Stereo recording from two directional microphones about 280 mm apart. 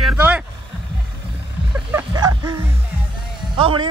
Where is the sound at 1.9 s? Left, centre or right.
Centre.